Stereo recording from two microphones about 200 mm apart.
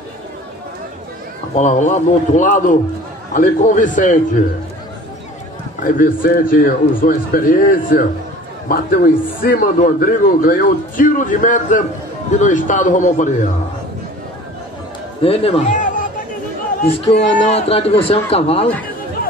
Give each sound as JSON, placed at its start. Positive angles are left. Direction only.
{"t": 1.5, "sound": "a man's voice", "side_deg": 35}
{"t": 5.8, "sound": "a man's voice", "side_deg": 45}
{"t": 15.2, "sound": "a man's voice", "side_deg": 30}